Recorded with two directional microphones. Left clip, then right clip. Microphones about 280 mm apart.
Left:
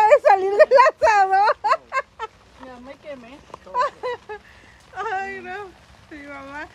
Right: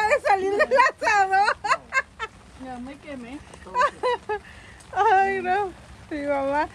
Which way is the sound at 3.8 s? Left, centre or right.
Centre.